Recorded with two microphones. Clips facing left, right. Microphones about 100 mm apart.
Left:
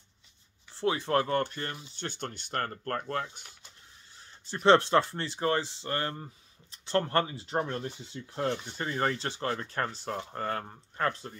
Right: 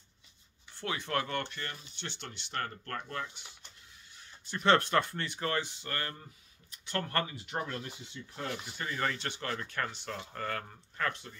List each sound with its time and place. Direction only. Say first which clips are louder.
0.7 s speech: left 7 dB; 30° left (ahead or behind)
4.1 s speech: left 1 dB; 30° left (ahead or behind)